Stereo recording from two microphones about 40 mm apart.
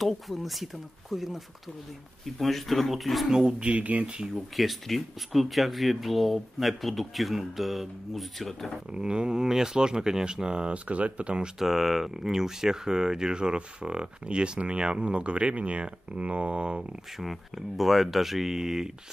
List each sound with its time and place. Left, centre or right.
0.0 s speech: centre
3.3 s speech: right
3.7 s speech: right
4.6 s speech: centre
8.9 s speech: right
10.7 s speech: right
11.6 s speech: centre; by 16.8 s right
17.2 s speech: centre